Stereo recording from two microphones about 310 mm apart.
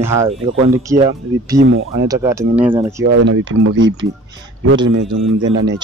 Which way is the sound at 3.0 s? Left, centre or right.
Right.